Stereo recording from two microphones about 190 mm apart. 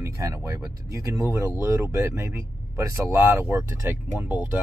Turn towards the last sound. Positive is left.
turn(degrees=-10)  # may be behind; listen again after turning